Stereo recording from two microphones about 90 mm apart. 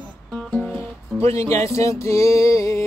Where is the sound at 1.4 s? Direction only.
35° left (ahead or behind).